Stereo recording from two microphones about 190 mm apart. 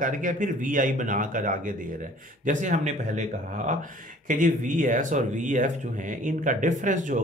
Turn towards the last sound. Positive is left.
turn(degrees=-40)  # may be behind; listen again after turning